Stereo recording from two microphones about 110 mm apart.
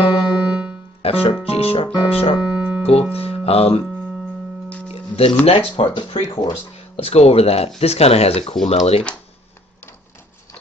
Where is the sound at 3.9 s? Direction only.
5° left (ahead or behind).